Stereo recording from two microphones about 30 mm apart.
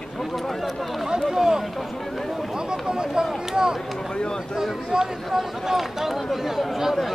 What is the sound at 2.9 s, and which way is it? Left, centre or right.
Speech, right.